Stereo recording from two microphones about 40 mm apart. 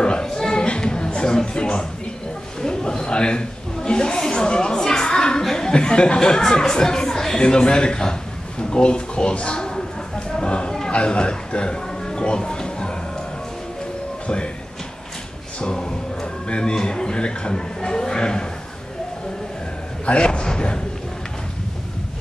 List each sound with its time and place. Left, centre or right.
0.0 s a sound: centre
2.6 s a man's voice: centre
5.7 s speech: left
14.2 s speech: left
15.6 s a sound: centre
20.1 s speech: left